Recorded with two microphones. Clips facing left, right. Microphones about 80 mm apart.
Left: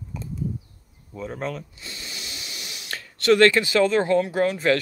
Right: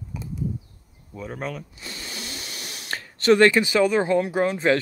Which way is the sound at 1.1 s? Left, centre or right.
Centre.